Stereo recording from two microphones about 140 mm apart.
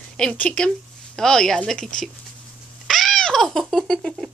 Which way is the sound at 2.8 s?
Centre (ahead or behind).